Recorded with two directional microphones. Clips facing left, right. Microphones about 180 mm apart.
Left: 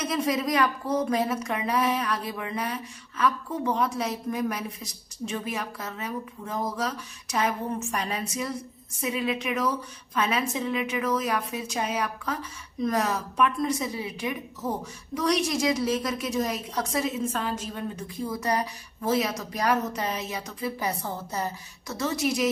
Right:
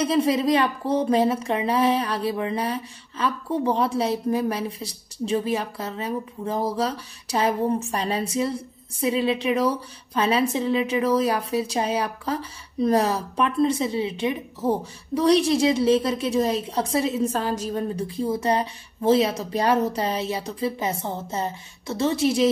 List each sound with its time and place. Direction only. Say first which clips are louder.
0.0 s a woman's voice: right 6 dB; 30° right (ahead or behind)